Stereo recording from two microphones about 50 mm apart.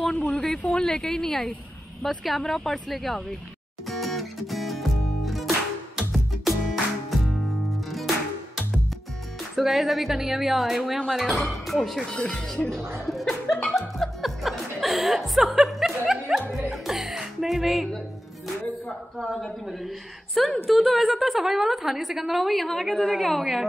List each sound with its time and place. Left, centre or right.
0.3 s a sound: centre
0.7 s a woman's voice: centre
3.8 s music: centre
9.6 s a woman's voice: centre
13.0 s chuckle: centre
16.1 s music: centre
16.7 s music: centre
18.9 s a woman's voice: centre